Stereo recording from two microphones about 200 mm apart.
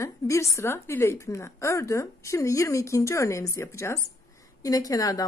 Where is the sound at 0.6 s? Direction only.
15° left (ahead or behind).